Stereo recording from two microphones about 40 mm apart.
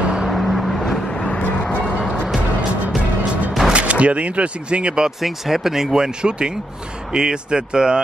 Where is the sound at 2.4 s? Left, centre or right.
Right.